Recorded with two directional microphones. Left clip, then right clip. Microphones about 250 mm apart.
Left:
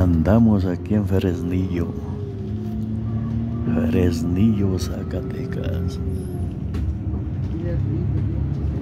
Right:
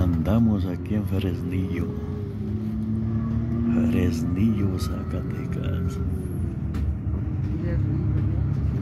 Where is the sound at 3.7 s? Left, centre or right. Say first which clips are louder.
Left 4 dB; centre.